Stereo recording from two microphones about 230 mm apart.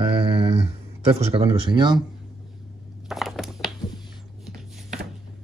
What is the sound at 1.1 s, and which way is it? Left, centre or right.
Speech, right.